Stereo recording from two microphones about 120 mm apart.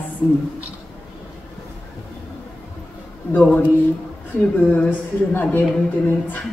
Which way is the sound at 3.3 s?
15° left (ahead or behind).